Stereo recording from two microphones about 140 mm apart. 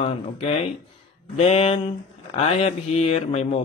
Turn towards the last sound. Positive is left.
turn(degrees=50)  # may be behind; listen again after turning